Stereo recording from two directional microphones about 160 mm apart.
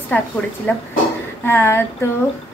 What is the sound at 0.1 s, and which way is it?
A woman's voice, 10° left (ahead or behind).